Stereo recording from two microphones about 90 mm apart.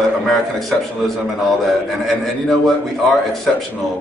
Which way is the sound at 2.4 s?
5° left (ahead or behind).